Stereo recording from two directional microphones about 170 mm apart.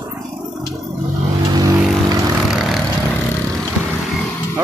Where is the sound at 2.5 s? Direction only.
Centre (ahead or behind).